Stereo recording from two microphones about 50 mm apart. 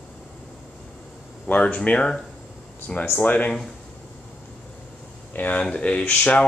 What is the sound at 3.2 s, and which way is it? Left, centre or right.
Speech, left.